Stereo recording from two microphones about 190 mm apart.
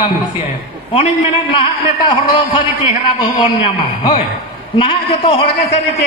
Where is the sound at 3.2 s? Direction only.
25° left (ahead or behind).